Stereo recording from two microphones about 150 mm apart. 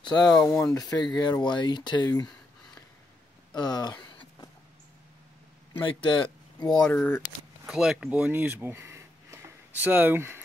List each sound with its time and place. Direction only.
0.0 s speech: 30° left (ahead or behind)
0.4 s speech: 5° left (ahead or behind)
0.7 s speech: 25° left (ahead or behind)
3.5 s a sound: 30° left (ahead or behind)
5.7 s speech: 35° left (ahead or behind)
6.8 s speech: 10° left (ahead or behind)
7.6 s speech: 5° right (ahead or behind)